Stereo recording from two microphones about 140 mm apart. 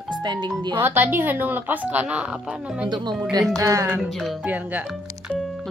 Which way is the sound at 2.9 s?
30° right (ahead or behind).